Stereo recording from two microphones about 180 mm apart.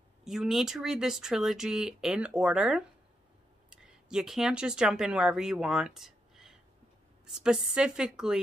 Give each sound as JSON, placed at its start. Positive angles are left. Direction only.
{"t": 0.2, "sound": "speech", "side_deg": 0}